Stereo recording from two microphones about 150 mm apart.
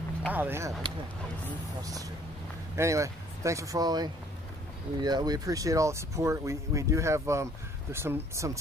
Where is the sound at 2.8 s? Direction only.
20° right (ahead or behind).